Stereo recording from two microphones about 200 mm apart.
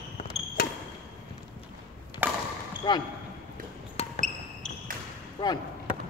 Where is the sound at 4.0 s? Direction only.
30° left (ahead or behind).